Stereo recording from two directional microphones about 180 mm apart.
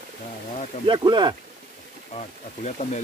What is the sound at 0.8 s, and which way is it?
Speech, 25° right (ahead or behind).